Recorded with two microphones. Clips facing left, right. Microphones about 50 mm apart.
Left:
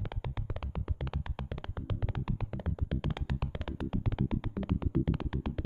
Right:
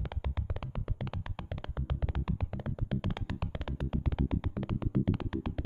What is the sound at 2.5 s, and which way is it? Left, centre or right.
Music, centre.